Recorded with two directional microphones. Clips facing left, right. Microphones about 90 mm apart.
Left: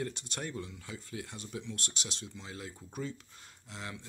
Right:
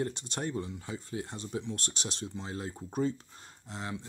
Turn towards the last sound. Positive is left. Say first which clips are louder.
# right 5 dB
turn(degrees=-30)  # may be behind; listen again after turning